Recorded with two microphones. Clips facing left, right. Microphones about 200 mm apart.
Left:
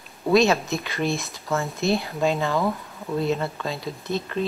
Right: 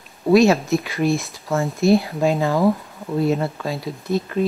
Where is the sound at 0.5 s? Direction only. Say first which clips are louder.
Right 6 dB; centre (ahead or behind).